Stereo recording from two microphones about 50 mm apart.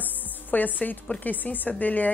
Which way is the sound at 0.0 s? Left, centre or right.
Left.